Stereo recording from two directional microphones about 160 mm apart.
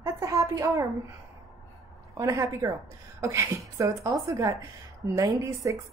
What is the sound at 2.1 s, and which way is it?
A woman's voice, 20° right (ahead or behind).